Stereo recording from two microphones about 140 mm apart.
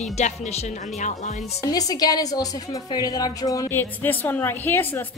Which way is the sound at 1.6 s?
25° left (ahead or behind).